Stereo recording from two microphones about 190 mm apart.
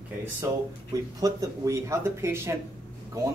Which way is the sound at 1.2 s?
15° right (ahead or behind).